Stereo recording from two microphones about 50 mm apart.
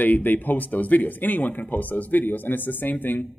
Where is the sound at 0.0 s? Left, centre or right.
Left.